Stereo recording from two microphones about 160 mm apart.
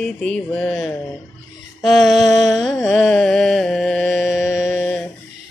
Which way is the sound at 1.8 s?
Centre (ahead or behind).